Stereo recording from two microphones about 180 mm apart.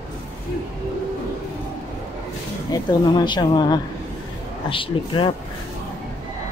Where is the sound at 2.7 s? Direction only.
25° left (ahead or behind).